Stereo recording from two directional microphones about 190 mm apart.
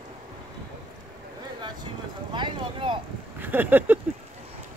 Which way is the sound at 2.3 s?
25° right (ahead or behind).